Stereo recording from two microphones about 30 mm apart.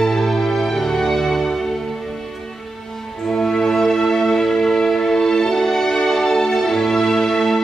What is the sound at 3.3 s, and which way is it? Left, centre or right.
Music, centre.